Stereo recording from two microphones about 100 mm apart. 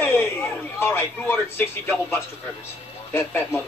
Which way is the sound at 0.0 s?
25° left (ahead or behind).